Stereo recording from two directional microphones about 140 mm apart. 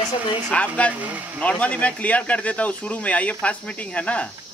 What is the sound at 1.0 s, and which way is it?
Speech, 10° right (ahead or behind).